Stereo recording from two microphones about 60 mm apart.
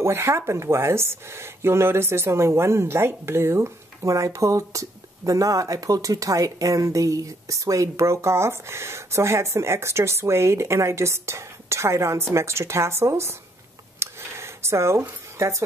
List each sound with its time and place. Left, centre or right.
0.0 s speech: right
13.9 s a sound: right
15.3 s speech: right